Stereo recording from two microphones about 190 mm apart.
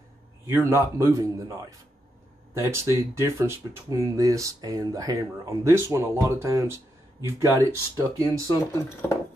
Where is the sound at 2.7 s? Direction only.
15° right (ahead or behind).